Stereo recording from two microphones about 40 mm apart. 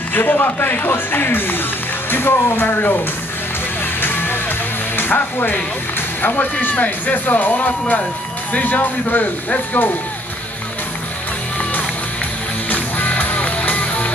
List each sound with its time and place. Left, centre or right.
0.1 s speech: left
4.0 s music: left
4.9 s speech: left
6.7 s speech: left
12.6 s music: left